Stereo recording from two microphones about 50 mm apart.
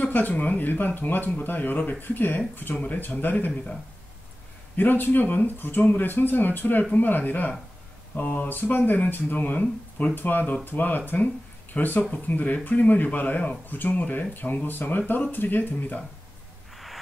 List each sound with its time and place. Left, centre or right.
0.0 s speech: left
4.7 s speech: left
16.7 s a sound: centre